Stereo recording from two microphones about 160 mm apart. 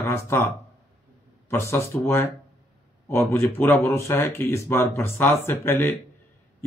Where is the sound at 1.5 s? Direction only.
15° left (ahead or behind).